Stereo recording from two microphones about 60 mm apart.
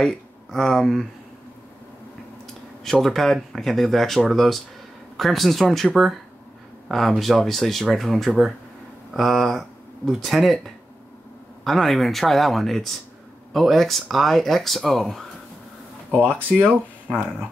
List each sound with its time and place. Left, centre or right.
0.0 s speech: centre
2.8 s speech: centre
6.9 s speech: centre
16.2 s speech: centre